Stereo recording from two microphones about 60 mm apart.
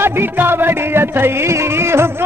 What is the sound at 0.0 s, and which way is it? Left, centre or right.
Music, right.